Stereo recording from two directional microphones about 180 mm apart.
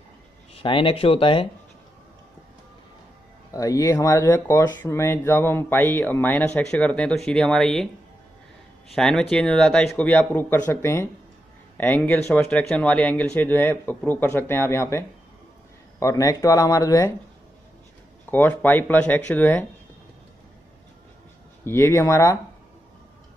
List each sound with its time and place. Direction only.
0.6 s speech: 30° left (ahead or behind)
3.5 s speech: 20° left (ahead or behind)
18.3 s speech: 10° left (ahead or behind)
21.6 s speech: 15° left (ahead or behind)